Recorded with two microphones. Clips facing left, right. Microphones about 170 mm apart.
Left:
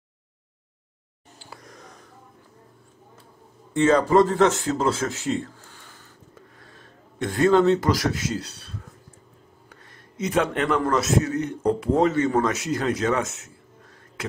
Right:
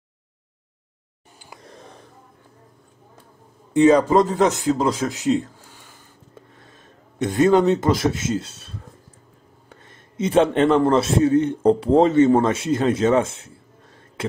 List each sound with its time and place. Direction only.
1.6 s a sound: 30° right (ahead or behind)
3.7 s speech: 15° right (ahead or behind)
9.7 s a man's voice: 25° right (ahead or behind)